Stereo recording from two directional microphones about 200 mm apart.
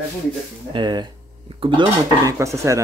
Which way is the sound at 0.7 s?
25° right (ahead or behind).